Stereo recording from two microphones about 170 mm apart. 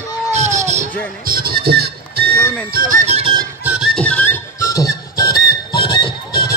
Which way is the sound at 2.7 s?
55° right (ahead or behind).